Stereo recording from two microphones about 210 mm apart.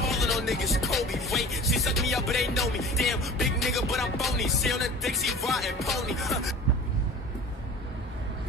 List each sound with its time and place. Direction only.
0.0 s music: centre (ahead or behind)